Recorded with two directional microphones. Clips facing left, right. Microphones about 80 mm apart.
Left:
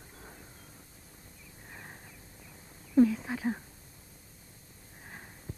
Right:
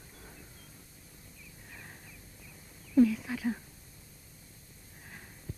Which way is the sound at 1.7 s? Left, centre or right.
Left.